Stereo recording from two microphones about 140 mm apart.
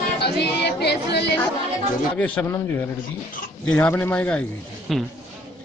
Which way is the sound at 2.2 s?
15° left (ahead or behind).